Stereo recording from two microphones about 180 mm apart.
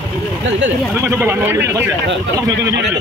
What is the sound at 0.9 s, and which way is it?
Speech, 15° right (ahead or behind).